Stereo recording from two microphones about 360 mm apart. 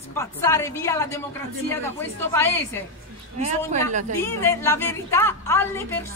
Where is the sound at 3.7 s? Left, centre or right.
Centre.